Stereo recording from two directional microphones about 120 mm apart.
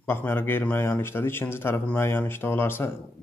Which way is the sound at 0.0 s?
20° left (ahead or behind).